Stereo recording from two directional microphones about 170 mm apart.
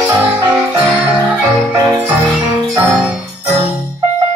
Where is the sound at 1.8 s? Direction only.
10° right (ahead or behind).